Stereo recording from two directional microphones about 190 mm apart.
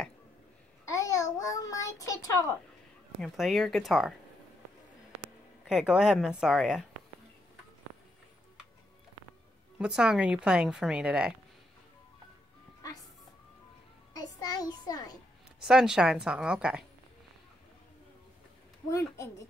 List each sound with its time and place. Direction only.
0.8 s a sound: 15° left (ahead or behind)
3.2 s speech: centre (ahead or behind)
5.7 s speech: 5° right (ahead or behind)
9.8 s speech: 5° right (ahead or behind)
14.1 s music: 20° left (ahead or behind)
15.6 s speech: 5° right (ahead or behind)
18.9 s a woman's voice: 15° left (ahead or behind)